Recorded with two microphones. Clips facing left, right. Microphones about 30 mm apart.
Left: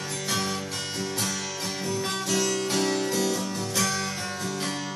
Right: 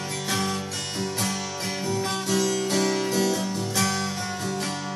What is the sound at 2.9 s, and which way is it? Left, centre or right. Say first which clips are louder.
Music: right 2 dB; right.